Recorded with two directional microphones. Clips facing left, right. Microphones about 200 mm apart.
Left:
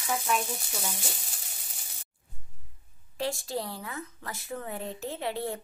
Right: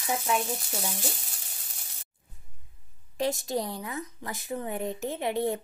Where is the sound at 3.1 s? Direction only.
20° right (ahead or behind).